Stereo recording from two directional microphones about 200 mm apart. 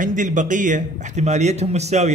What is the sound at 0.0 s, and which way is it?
Speech, 40° right (ahead or behind).